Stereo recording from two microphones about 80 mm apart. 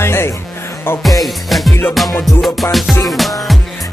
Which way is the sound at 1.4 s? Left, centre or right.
Centre.